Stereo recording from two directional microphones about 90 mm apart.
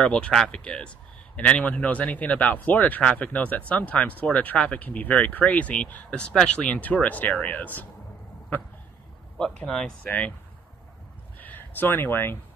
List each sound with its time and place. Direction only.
0.0 s a man's voice: 10° left (ahead or behind)
9.4 s speech: 5° left (ahead or behind)
10.0 s a man's voice: 15° left (ahead or behind)
11.3 s speech: 20° left (ahead or behind)